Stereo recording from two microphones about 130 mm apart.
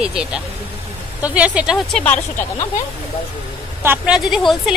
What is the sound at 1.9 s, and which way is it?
Speech, 10° left (ahead or behind).